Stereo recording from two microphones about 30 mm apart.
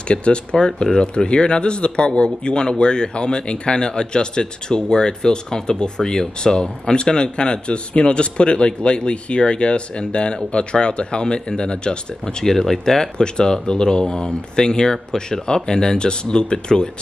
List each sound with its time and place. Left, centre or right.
0.1 s speech: left
12.4 s speech: centre
13.2 s speech: left